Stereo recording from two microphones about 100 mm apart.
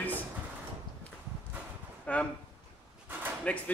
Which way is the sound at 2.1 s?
15° left (ahead or behind).